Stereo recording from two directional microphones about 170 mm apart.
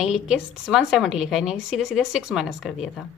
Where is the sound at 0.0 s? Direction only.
5° right (ahead or behind).